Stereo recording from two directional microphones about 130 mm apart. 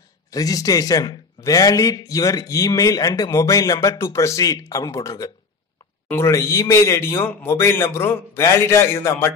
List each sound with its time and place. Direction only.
0.3 s a man's voice: 30° left (ahead or behind)